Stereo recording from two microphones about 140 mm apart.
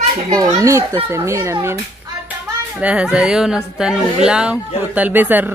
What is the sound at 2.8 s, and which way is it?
A woman's voice, 10° right (ahead or behind).